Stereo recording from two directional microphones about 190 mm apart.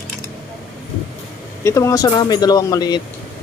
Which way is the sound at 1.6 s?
15° left (ahead or behind).